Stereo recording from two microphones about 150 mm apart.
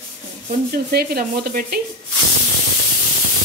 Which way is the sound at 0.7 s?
90° right.